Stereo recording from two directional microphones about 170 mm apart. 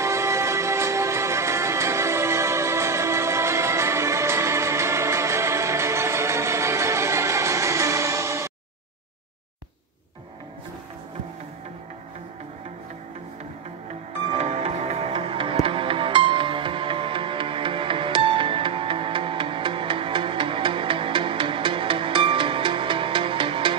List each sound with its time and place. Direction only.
0.0 s music: 15° right (ahead or behind)
14.3 s music: 40° right (ahead or behind)